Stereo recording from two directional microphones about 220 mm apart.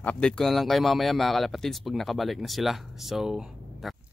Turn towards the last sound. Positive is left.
turn(degrees=0)  # may be behind; listen again after turning